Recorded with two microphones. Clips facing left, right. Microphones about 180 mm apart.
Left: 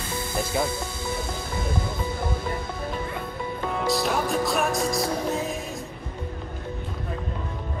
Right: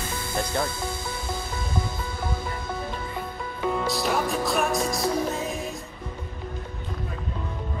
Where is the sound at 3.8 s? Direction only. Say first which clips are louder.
Left 1 dB; centre (ahead or behind).